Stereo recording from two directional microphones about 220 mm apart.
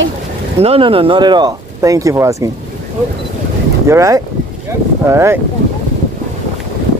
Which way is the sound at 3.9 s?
15° right (ahead or behind).